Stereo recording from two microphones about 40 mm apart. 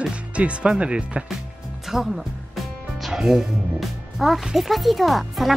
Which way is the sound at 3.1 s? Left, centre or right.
Centre.